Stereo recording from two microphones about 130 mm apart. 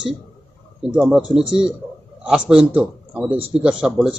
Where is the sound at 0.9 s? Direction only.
5° right (ahead or behind).